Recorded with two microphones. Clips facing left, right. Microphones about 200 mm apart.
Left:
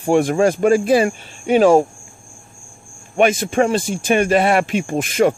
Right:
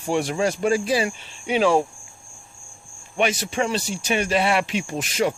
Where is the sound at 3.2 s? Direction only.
50° left (ahead or behind).